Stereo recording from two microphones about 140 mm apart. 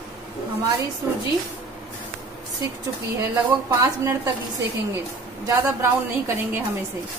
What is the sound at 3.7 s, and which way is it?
Speech, 20° right (ahead or behind).